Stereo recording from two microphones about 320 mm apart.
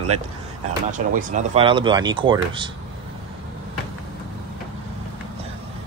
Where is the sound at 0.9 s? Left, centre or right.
Right.